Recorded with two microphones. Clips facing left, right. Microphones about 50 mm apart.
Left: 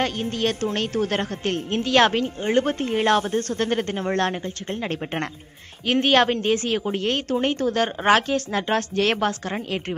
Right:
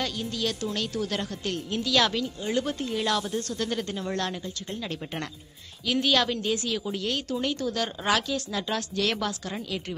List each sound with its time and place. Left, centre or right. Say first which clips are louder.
0.0 s a woman's voice: left 6 dB; left
5.9 s a woman's voice: left 6 dB; left